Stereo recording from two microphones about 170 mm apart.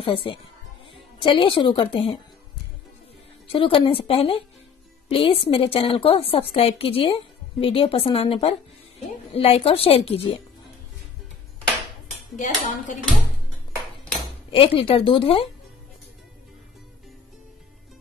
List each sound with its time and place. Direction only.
0.0 s a woman's voice: 30° left (ahead or behind)
3.5 s a woman's voice: 30° left (ahead or behind)
12.4 s speech: 50° left (ahead or behind)
14.5 s a woman's voice: 35° left (ahead or behind)